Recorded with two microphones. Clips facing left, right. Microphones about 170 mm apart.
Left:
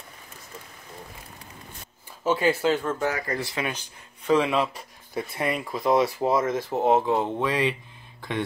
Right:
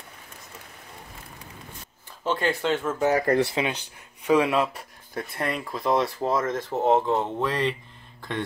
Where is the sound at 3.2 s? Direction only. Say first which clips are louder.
Right 9 dB; 65° right (ahead or behind).